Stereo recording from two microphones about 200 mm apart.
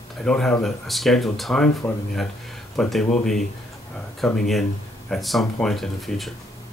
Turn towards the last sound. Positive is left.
turn(degrees=0)  # may be behind; listen again after turning